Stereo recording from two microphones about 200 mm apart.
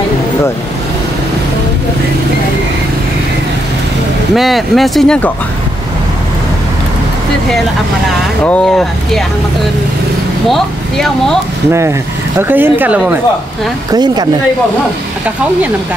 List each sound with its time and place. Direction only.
4.4 s speech: centre (ahead or behind)
8.5 s speech: 5° left (ahead or behind)
10.5 s speech: centre (ahead or behind)
12.4 s speech: 10° right (ahead or behind)
13.9 s speech: 20° right (ahead or behind)